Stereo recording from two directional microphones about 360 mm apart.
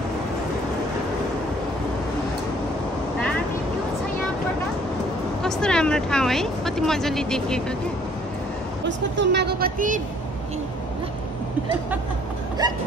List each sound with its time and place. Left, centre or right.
5.4 s speech: centre
8.8 s speech: right